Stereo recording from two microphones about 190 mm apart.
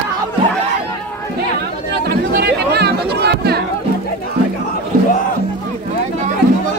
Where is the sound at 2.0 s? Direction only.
55° right (ahead or behind).